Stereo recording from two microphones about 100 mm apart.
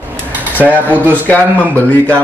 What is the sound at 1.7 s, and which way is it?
Speech, 15° left (ahead or behind).